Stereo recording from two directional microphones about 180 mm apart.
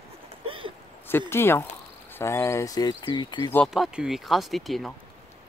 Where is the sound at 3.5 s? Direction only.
Centre (ahead or behind).